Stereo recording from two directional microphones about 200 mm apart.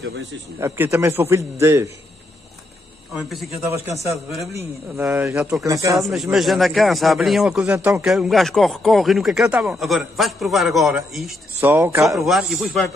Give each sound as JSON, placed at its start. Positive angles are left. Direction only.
{"t": 0.0, "sound": "a man's voice", "side_deg": -65}
{"t": 0.6, "sound": "a man's voice", "side_deg": -15}
{"t": 4.0, "sound": "a man's voice", "side_deg": 0}
{"t": 5.9, "sound": "speech", "side_deg": 0}
{"t": 7.6, "sound": "a man's voice", "side_deg": -15}
{"t": 8.0, "sound": "speech", "side_deg": 0}
{"t": 12.2, "sound": "speech", "side_deg": 0}